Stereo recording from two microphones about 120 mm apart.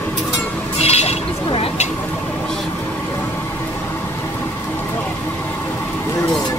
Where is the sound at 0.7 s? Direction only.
60° left (ahead or behind).